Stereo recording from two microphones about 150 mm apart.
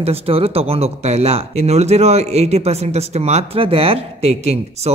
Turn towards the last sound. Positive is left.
turn(degrees=-45)  # may be behind; listen again after turning